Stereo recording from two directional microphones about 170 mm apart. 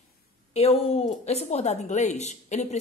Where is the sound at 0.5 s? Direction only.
35° left (ahead or behind).